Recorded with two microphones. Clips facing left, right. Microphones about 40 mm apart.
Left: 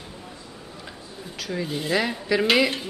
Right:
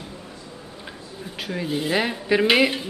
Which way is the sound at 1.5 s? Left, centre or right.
Centre.